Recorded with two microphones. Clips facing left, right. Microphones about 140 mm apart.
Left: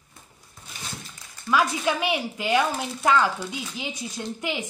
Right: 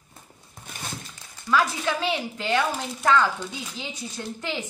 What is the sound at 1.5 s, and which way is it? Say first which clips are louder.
A woman's voice: left 1 dB; 15° left (ahead or behind).